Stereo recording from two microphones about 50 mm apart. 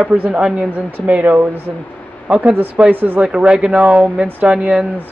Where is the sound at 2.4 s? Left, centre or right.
Right.